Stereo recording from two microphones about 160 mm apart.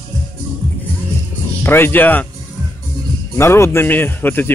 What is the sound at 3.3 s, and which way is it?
Speech, 15° left (ahead or behind).